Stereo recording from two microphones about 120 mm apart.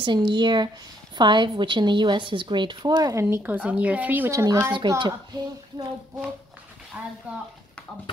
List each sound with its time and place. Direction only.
0.0 s a woman's voice: 40° right (ahead or behind); by 3.3 s 25° right (ahead or behind)
3.4 s a woman's voice: 10° right (ahead or behind)
4.3 s speech: 25° right (ahead or behind)
4.8 s a woman's voice: 40° right (ahead or behind)
7.0 s a woman's voice: 15° right (ahead or behind)